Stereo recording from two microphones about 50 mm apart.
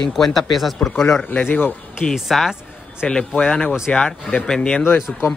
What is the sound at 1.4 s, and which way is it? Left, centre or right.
Speech, left.